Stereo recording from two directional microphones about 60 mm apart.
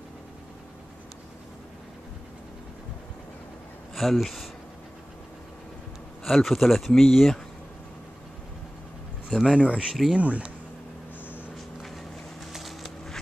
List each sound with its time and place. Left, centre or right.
3.9 s speech: centre
6.2 s speech: centre
9.3 s speech: centre
9.6 s speech: centre